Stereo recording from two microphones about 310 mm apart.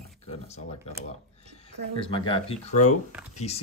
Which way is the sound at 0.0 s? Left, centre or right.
Centre.